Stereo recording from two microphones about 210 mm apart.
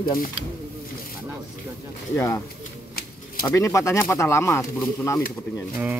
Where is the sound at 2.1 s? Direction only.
10° left (ahead or behind).